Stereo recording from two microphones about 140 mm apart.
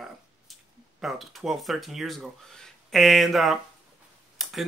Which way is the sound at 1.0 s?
Centre (ahead or behind).